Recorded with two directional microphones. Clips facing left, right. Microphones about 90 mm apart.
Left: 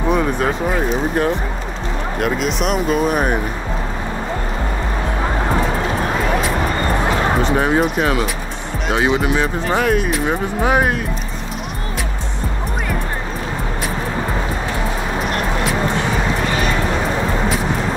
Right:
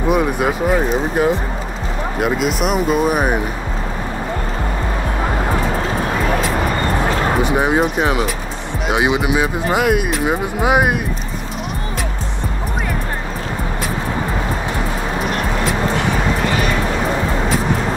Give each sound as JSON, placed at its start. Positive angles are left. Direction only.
{"t": 0.1, "sound": "speech", "side_deg": -10}
{"t": 7.4, "sound": "speech", "side_deg": -15}